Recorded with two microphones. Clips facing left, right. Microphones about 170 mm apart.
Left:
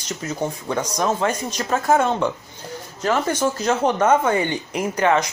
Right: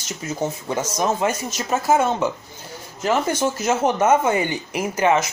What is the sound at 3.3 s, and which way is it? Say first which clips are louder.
Speech: even; 10° right (ahead or behind).